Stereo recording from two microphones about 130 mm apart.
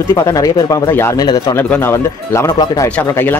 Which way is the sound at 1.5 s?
15° left (ahead or behind).